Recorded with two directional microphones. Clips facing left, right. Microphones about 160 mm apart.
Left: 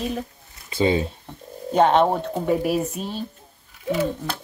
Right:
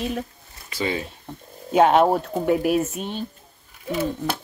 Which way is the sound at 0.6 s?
25° left (ahead or behind).